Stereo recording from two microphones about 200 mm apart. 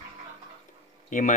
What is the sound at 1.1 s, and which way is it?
Speech, 40° left (ahead or behind).